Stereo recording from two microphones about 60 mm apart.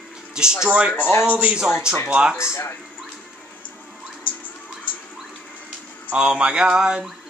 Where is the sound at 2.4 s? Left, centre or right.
Left.